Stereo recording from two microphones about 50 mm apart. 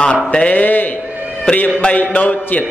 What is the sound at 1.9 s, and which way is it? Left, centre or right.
Speech, left.